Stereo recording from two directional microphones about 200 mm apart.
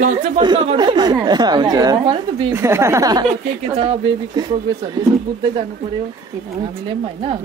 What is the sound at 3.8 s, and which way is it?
Speech, 25° right (ahead or behind).